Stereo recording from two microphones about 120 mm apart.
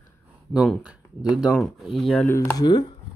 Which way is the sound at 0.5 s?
5° right (ahead or behind).